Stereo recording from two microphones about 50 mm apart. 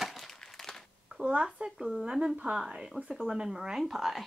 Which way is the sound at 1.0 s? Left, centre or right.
Centre.